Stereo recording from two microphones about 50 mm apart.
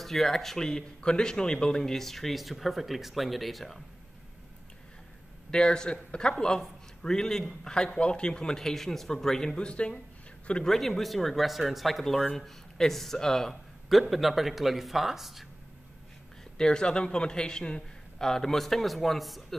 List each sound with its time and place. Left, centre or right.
0.0 s speech: centre
5.5 s a man's voice: centre
10.6 s a man's voice: centre
13.8 s speech: centre
16.5 s a man's voice: centre